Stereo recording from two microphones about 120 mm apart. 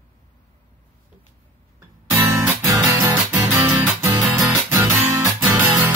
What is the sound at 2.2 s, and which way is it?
Music, 25° right (ahead or behind).